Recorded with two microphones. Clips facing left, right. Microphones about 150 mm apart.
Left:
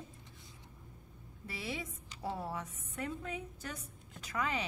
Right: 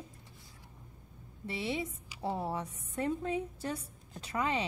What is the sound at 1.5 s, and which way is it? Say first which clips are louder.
A woman's voice: right 6 dB; 25° right (ahead or behind).